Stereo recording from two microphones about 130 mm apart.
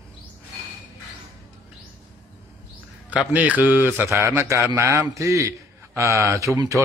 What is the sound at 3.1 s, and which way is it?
A man's voice, 10° right (ahead or behind).